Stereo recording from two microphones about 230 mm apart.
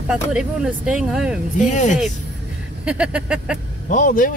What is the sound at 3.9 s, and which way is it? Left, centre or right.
Speech, left.